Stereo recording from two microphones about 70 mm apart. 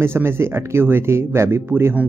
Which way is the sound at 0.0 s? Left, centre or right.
Right.